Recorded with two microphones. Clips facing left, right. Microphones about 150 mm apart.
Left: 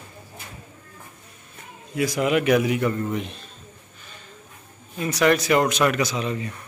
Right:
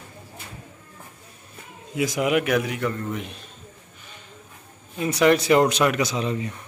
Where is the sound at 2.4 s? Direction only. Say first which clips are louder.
Left 4 dB; 5° left (ahead or behind).